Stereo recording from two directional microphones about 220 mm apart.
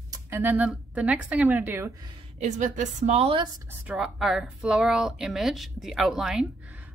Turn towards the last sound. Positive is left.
turn(degrees=-5)  # may be behind; listen again after turning